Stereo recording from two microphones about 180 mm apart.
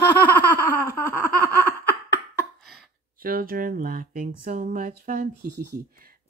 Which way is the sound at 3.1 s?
55° right (ahead or behind).